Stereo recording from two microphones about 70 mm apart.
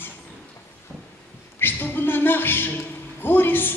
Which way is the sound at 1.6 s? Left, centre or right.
Left.